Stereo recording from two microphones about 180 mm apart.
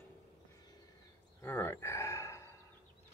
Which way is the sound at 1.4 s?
15° left (ahead or behind).